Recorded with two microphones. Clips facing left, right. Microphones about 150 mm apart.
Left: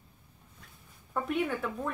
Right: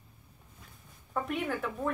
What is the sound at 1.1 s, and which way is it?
Speech, centre (ahead or behind).